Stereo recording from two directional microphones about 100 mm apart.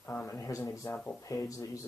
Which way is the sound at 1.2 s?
35° left (ahead or behind).